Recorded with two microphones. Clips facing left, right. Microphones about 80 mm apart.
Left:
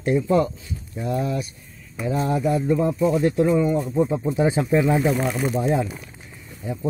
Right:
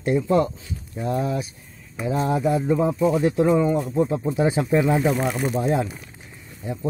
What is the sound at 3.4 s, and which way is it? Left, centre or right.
Speech, right.